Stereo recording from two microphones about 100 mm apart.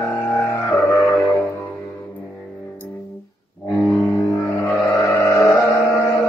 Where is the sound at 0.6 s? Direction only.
35° left (ahead or behind).